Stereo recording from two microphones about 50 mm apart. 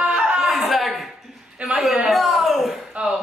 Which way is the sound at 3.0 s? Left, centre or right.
Right.